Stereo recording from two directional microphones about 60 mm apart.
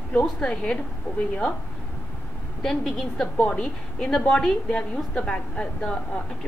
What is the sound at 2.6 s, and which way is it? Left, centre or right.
A woman's voice, centre.